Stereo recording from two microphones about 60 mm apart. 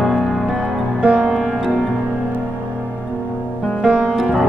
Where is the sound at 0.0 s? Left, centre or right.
Centre.